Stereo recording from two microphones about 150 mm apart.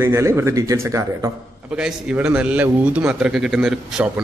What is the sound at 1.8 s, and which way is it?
A man's voice, 5° right (ahead or behind).